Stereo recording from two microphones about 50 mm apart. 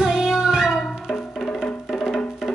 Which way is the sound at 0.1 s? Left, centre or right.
Centre.